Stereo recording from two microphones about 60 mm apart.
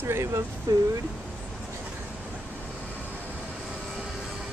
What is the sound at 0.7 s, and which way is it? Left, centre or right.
Speech, right.